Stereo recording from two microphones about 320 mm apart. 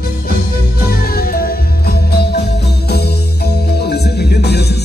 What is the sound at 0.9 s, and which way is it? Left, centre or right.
Music, left.